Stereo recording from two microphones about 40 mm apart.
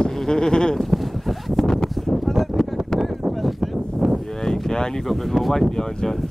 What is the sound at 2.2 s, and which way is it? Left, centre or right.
Wind noise, centre.